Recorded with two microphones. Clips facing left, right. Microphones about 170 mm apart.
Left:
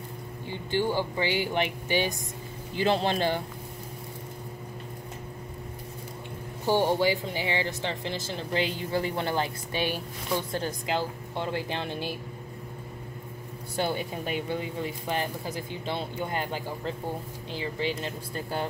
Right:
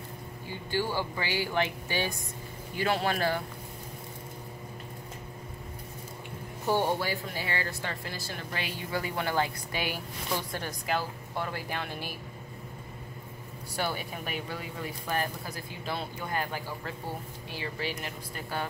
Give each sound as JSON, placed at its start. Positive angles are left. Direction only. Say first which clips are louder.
{"t": 0.7, "sound": "speech", "louder": "left 4 dB", "side_deg": 20}
{"t": 7.0, "sound": "speech", "louder": "left 7 dB", "side_deg": 15}
{"t": 13.7, "sound": "speech", "louder": "left 4 dB", "side_deg": 25}